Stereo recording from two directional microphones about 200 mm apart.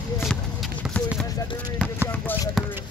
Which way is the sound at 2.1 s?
10° left (ahead or behind).